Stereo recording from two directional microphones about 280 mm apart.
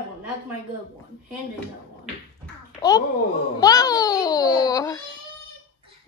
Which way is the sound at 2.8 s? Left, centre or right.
Centre.